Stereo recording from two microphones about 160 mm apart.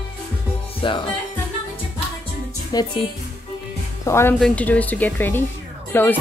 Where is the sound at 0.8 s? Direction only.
30° left (ahead or behind).